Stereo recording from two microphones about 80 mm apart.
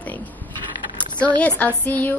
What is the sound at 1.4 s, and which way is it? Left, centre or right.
Speech, left.